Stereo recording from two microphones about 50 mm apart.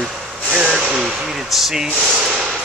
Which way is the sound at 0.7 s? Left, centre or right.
Centre.